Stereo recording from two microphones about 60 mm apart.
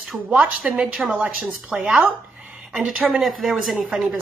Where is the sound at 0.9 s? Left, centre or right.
Centre.